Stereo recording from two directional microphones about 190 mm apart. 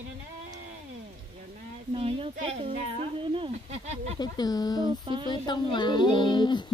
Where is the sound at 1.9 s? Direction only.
30° right (ahead or behind).